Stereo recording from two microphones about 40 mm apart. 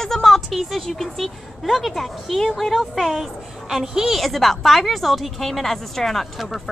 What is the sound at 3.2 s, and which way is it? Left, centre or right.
Speech, centre.